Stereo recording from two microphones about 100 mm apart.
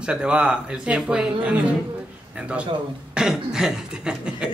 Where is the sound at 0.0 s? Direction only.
10° right (ahead or behind).